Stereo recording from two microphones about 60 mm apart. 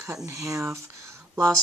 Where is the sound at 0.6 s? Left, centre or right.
Right.